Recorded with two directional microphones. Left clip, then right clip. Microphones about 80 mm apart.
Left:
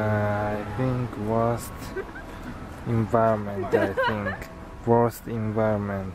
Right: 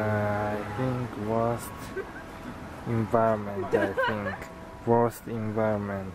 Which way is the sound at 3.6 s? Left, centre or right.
Left.